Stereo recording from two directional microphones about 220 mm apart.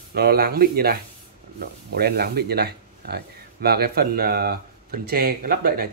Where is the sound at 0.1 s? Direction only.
45° right (ahead or behind).